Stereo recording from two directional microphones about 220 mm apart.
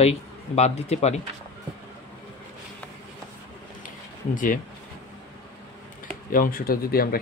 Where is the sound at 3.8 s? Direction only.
35° left (ahead or behind).